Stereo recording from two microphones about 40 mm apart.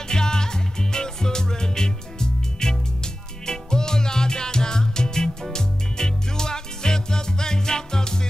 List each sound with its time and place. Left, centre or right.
0.1 s music: centre